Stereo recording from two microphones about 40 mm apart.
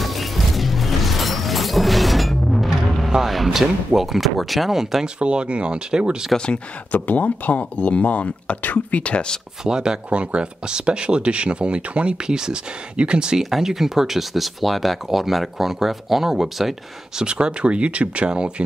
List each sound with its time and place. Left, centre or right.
0.0 s music: centre
3.1 s a sound: centre
3.5 s speech: centre
5.0 s speech: right
6.3 s speech: left
6.9 s speech: left
9.7 s speech: centre
13.4 s speech: centre
17.2 s speech: right